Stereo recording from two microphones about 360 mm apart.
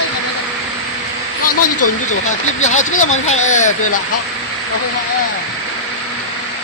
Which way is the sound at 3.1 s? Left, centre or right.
Centre.